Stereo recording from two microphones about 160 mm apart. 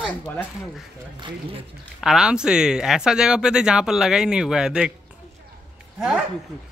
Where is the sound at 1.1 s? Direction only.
30° right (ahead or behind).